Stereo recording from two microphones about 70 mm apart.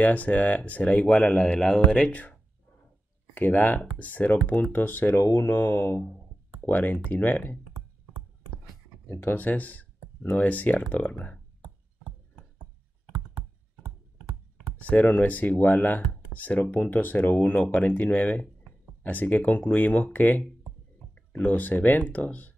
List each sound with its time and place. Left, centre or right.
0.0 s speech: left
3.3 s speech: left
5.2 s speech: left
9.0 s speech: left
13.0 s clicking: right
14.8 s speech: left